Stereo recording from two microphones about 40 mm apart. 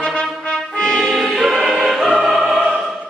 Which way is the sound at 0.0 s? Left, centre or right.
Left.